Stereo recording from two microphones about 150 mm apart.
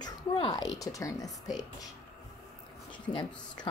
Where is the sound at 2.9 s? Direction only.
35° left (ahead or behind).